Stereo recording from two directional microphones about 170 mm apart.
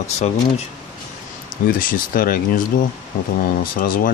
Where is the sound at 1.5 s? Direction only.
55° left (ahead or behind).